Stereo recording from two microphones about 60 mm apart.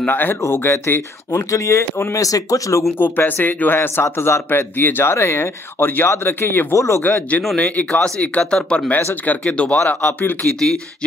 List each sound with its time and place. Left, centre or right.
0.0 s speech: left
1.3 s speech: left
2.1 s speech: left
3.0 s speech: left
6.7 s speech: left
7.0 s speech: left; by 8.9 s centre
8.9 s speech: left
9.4 s speech: centre
10.6 s speech: centre